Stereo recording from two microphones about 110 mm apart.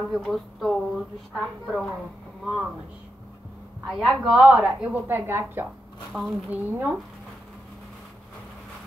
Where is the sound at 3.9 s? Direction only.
5° right (ahead or behind); by 6.9 s 20° right (ahead or behind).